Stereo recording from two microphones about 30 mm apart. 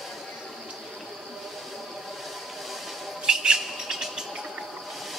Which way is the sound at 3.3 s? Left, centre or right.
Centre.